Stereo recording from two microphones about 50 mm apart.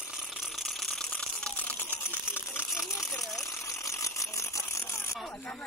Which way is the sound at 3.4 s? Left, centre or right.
Left.